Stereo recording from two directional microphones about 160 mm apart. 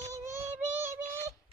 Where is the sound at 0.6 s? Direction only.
10° right (ahead or behind).